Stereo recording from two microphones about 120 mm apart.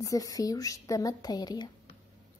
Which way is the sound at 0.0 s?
30° left (ahead or behind).